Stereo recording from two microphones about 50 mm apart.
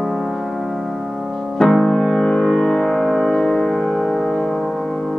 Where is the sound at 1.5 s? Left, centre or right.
Centre.